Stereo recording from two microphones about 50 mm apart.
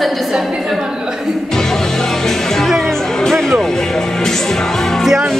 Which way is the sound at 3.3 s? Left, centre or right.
Centre.